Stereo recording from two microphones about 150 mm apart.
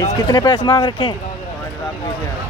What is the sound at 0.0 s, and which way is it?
Speech, 25° left (ahead or behind).